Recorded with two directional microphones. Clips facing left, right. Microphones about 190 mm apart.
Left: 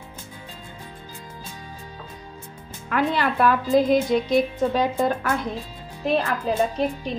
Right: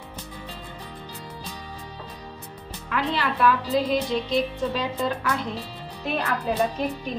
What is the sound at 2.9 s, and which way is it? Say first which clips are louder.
Speech: left 4 dB; 50° left (ahead or behind).